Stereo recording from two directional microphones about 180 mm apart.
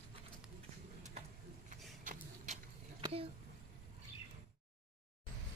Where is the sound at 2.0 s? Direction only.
45° right (ahead or behind).